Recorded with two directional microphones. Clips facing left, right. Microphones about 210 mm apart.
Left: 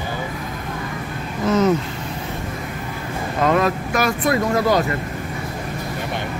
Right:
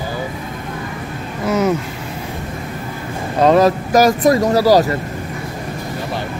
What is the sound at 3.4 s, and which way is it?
Speech, 35° right (ahead or behind).